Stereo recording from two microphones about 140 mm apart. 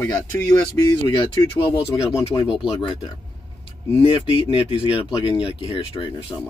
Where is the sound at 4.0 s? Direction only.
40° left (ahead or behind).